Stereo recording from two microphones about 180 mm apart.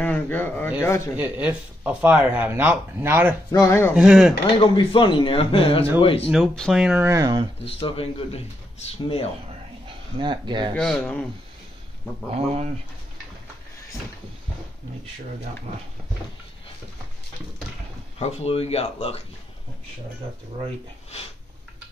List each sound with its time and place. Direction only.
0.0 s speech: 10° left (ahead or behind)
1.1 s speech: 10° right (ahead or behind)
3.5 s speech: 15° left (ahead or behind)
3.9 s speech: 5° right (ahead or behind)
4.7 s speech: 25° left (ahead or behind)
6.2 s speech: centre (ahead or behind)
7.0 s speech: 15° right (ahead or behind)
7.6 s speech: 30° left (ahead or behind)
10.1 s speech: 25° right (ahead or behind)
10.7 s speech: 5° left (ahead or behind)
18.2 s speech: 35° left (ahead or behind)